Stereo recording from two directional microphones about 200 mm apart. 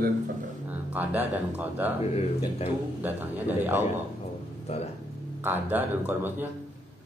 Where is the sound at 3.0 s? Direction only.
10° right (ahead or behind).